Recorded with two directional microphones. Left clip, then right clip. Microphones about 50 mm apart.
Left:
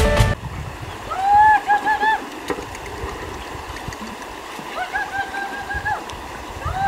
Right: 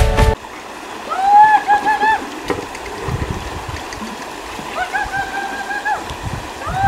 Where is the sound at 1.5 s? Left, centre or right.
Centre.